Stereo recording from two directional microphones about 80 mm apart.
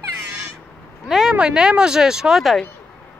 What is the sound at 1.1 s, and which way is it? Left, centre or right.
Speech, centre.